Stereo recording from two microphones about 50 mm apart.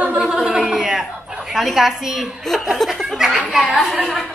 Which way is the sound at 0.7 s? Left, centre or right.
Centre.